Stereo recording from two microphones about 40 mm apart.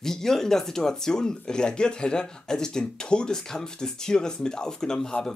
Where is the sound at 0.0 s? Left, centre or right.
Centre.